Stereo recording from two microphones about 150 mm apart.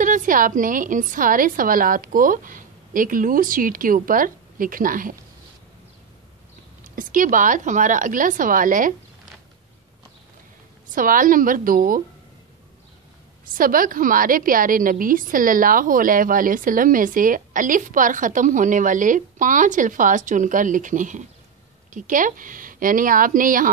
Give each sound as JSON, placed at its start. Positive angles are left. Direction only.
{"t": 0.0, "sound": "a woman's voice", "side_deg": -60}
{"t": 7.0, "sound": "a woman's voice", "side_deg": -65}
{"t": 11.0, "sound": "a woman's voice", "side_deg": -65}
{"t": 13.5, "sound": "a woman's voice", "side_deg": -65}